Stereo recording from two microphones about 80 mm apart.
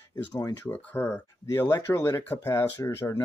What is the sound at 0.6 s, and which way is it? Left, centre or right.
Speech, left.